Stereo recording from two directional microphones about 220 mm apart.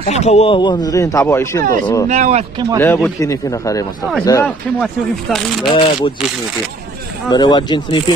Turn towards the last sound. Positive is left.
turn(degrees=20)  # may be behind; listen again after turning